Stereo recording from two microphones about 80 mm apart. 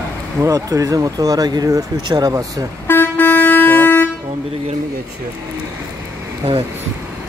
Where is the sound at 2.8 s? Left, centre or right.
Left.